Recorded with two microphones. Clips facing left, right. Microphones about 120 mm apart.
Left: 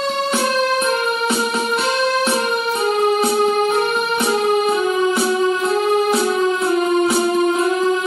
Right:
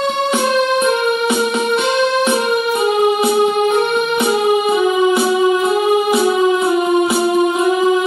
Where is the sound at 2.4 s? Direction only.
5° right (ahead or behind).